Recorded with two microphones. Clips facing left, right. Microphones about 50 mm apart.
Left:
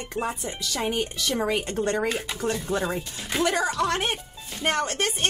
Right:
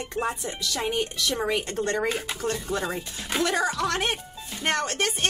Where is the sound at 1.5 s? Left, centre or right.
Centre.